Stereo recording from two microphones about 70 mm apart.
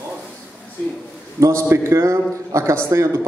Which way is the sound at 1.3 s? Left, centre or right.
Right.